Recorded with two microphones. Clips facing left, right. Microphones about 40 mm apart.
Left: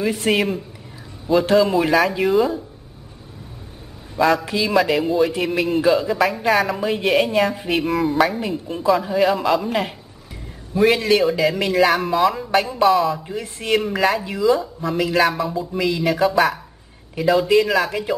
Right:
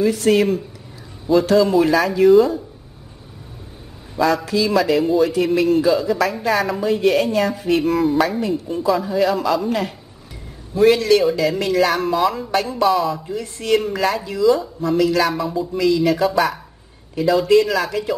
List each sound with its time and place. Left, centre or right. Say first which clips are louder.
0.0 s speech: right 4 dB; left
1.4 s speech: even; left
1.7 s speech: right 1 dB; centre
4.2 s speech: left 1 dB; centre
4.6 s speech: even; centre
7.9 s speech: right 1 dB; centre
13.3 s speech: right 2 dB; left
13.7 s speech: left 1 dB; centre
15.3 s speech: right 1 dB; centre
15.8 s speech: right 2 dB; centre